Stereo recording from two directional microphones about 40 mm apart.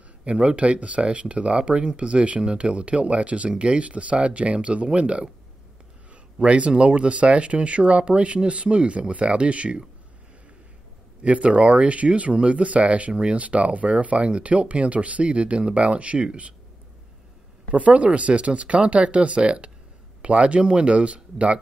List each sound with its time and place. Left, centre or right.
0.2 s speech: right
6.4 s speech: right
11.2 s speech: right
17.6 s speech: right